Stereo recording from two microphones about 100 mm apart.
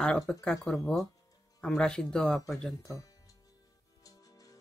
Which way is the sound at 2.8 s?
35° left (ahead or behind).